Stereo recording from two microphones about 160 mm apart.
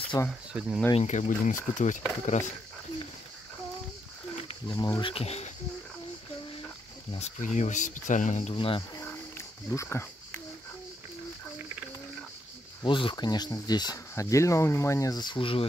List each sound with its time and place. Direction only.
0.3 s speech: 5° right (ahead or behind)
0.9 s speech: 50° left (ahead or behind)
4.5 s speech: 30° left (ahead or behind)
5.1 s speech: 40° left (ahead or behind)
7.1 s speech: 45° left (ahead or behind)
8.5 s speech: 35° left (ahead or behind)
9.7 s speech: 15° left (ahead or behind)
12.8 s speech: 30° left (ahead or behind)